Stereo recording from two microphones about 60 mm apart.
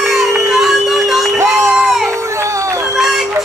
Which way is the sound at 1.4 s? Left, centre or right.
Right.